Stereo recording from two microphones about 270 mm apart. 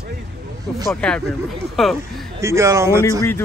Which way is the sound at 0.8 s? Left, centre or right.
Centre.